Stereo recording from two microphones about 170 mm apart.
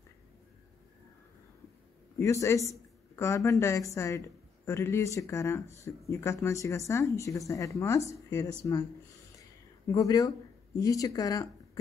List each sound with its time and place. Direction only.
2.1 s speech: 15° left (ahead or behind)
9.4 s a sound: 20° left (ahead or behind)
10.8 s speech: 20° left (ahead or behind)